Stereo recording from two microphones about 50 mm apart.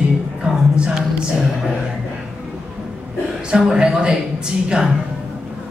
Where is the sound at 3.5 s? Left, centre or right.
Centre.